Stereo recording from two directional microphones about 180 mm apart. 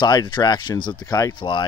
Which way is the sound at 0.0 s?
25° left (ahead or behind).